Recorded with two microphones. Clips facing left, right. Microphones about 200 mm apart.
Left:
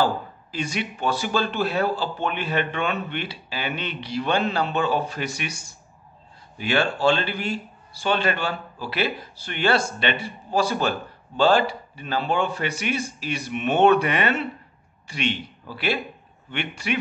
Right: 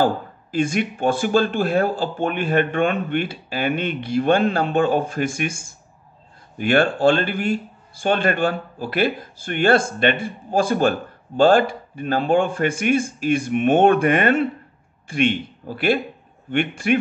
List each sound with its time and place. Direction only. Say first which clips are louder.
0.0 s a man's voice: right 3 dB; 50° right (ahead or behind)